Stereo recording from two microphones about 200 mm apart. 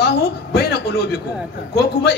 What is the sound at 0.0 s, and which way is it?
A man's voice, 55° left (ahead or behind).